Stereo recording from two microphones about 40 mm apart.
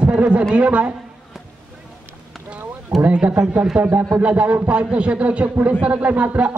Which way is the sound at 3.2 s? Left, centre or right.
Right.